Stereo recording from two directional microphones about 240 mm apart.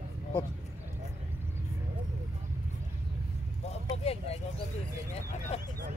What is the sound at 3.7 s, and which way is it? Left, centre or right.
Vehicle, left.